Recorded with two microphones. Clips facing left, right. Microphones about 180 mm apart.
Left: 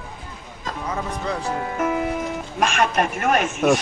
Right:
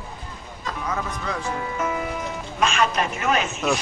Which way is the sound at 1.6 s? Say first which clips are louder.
Left 4 dB; 55° left (ahead or behind).